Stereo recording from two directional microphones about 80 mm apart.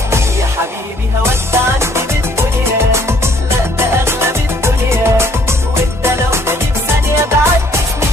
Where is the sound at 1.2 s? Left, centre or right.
Right.